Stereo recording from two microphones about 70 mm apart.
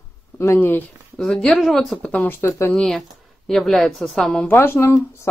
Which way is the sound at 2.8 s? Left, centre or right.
Centre.